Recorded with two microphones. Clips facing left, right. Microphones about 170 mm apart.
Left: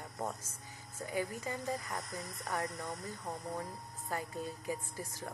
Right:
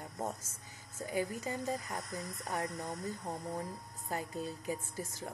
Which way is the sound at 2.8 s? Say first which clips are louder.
Right 2 dB; 15° right (ahead or behind).